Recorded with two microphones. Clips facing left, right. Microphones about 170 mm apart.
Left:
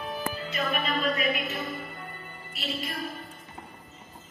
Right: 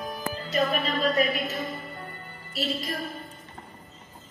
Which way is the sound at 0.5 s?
35° right (ahead or behind).